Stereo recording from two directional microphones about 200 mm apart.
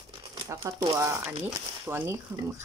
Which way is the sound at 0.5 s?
15° right (ahead or behind).